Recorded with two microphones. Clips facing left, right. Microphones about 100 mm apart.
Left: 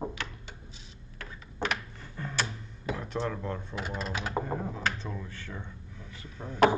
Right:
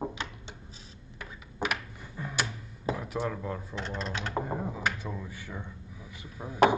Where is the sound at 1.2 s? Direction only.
10° right (ahead or behind).